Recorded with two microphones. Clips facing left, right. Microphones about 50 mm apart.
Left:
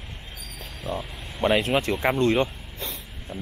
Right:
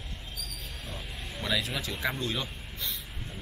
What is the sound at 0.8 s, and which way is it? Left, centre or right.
Speech, left.